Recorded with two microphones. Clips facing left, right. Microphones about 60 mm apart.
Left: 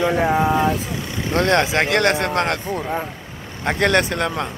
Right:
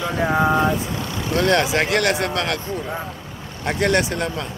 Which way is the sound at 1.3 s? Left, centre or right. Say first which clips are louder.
Left 1 dB; left.